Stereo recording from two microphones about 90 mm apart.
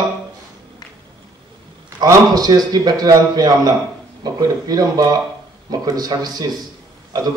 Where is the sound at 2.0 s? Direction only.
45° right (ahead or behind).